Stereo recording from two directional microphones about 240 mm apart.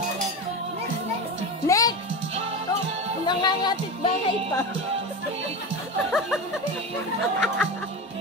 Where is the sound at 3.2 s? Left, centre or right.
Centre.